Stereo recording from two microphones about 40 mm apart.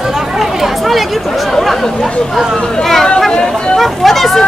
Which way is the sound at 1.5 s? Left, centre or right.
Centre.